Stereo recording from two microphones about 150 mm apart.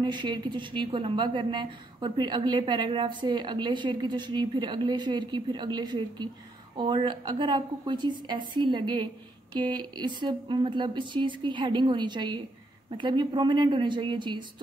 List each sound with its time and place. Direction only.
0.0 s a woman's voice: 30° right (ahead or behind)